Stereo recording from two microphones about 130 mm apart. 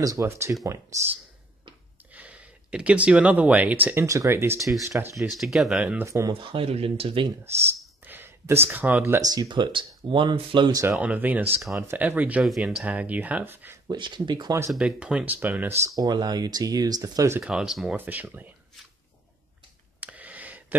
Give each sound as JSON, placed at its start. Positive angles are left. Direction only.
{"t": 0.0, "sound": "speech", "side_deg": -25}
{"t": 2.1, "sound": "speech", "side_deg": -10}
{"t": 5.1, "sound": "speech", "side_deg": 0}
{"t": 6.0, "sound": "speech", "side_deg": -25}
{"t": 6.4, "sound": "speech", "side_deg": -45}
{"t": 8.0, "sound": "speech", "side_deg": -15}
{"t": 9.2, "sound": "speech", "side_deg": -30}
{"t": 11.0, "sound": "speech", "side_deg": -10}
{"t": 13.8, "sound": "speech", "side_deg": -35}
{"t": 14.7, "sound": "speech", "side_deg": -5}
{"t": 16.0, "sound": "speech", "side_deg": -30}
{"t": 17.4, "sound": "speech", "side_deg": -5}
{"t": 17.9, "sound": "speech", "side_deg": -15}
{"t": 20.0, "sound": "a sound", "side_deg": -10}